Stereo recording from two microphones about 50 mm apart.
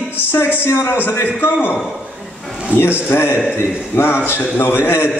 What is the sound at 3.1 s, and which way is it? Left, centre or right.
A man's voice, left.